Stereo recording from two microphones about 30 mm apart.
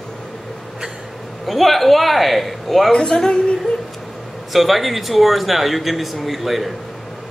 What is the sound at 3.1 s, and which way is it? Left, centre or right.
Speech, left.